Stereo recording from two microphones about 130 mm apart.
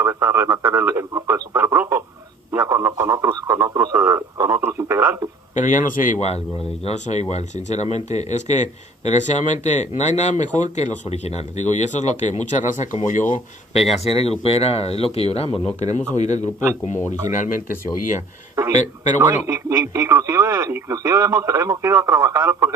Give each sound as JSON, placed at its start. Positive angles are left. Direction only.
{"t": 0.0, "sound": "speech", "side_deg": -20}
{"t": 2.5, "sound": "radio", "side_deg": -20}
{"t": 5.5, "sound": "speech", "side_deg": 75}
{"t": 6.2, "sound": "speech", "side_deg": 55}
{"t": 13.7, "sound": "speech", "side_deg": 50}
{"t": 17.3, "sound": "speech", "side_deg": 80}
{"t": 18.7, "sound": "speech", "side_deg": 65}
{"t": 19.2, "sound": "speech", "side_deg": -20}